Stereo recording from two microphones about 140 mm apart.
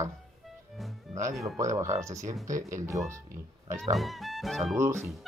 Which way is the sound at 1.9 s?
20° right (ahead or behind).